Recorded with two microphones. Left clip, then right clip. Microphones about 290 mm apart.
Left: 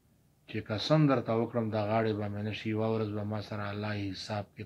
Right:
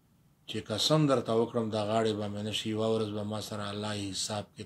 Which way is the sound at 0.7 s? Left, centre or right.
Right.